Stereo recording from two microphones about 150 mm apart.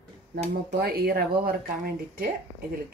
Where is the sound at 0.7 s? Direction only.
90° right.